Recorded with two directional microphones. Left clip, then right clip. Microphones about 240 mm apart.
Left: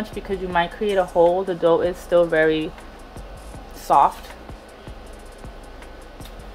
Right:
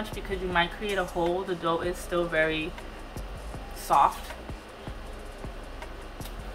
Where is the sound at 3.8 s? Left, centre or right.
Left.